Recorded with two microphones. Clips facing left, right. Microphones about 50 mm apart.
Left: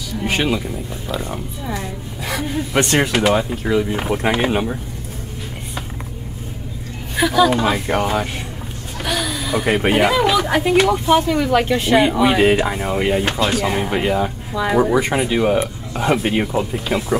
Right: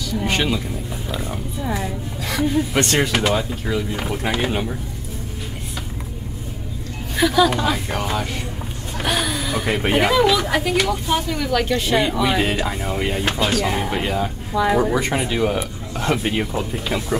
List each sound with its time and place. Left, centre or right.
0.2 s speech: centre
1.1 s speech: centre
2.2 s speech: centre; by 4.5 s left
7.2 s speech: centre
7.6 s speech: left
9.0 s a sound: centre
9.3 s a sound: centre
9.9 s speech: centre
10.2 s speech: centre